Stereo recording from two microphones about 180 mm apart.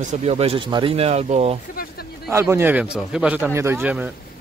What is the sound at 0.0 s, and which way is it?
Speech, 40° right (ahead or behind).